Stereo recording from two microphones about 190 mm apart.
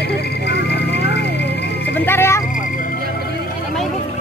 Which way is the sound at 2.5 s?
45° left (ahead or behind).